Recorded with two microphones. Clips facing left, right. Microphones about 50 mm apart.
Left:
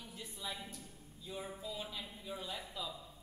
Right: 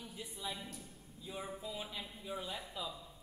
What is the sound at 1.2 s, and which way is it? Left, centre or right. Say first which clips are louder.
Speech: even; centre.